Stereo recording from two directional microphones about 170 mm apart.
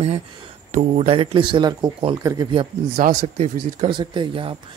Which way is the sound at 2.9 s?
50° right (ahead or behind).